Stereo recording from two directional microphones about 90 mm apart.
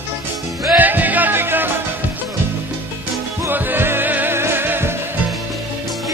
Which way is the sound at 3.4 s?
25° right (ahead or behind).